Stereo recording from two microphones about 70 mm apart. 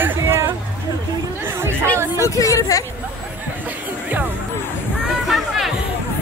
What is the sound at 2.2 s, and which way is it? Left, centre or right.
Speech, left.